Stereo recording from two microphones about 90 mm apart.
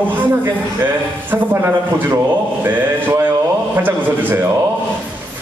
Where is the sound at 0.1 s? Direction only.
20° right (ahead or behind).